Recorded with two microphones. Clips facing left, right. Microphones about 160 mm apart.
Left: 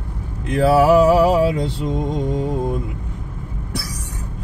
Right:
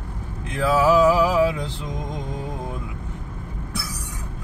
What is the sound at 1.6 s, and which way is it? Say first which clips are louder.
Mantra: left 8 dB; 70° left (ahead or behind).